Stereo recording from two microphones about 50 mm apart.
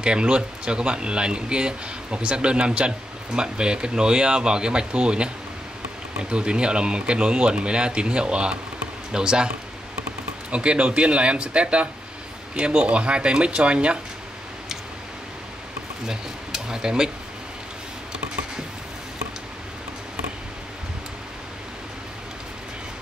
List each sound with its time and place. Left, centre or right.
0.0 s speech: centre
10.5 s speech: right
16.1 s speech: centre